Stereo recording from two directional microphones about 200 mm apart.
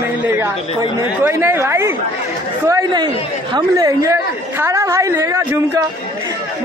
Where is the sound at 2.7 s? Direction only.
20° right (ahead or behind).